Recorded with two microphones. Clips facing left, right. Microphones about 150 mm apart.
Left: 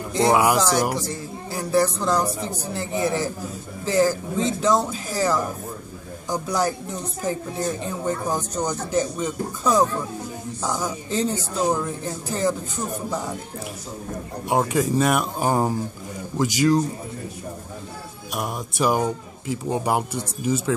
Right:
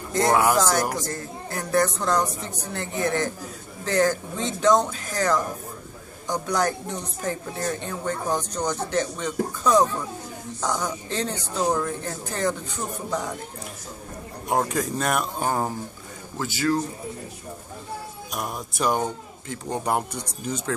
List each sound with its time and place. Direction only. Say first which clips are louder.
0.1 s speech: left 2 dB; centre (ahead or behind)
14.5 s speech: left 3 dB; 5° left (ahead or behind)
18.3 s speech: left 3 dB; 5° left (ahead or behind)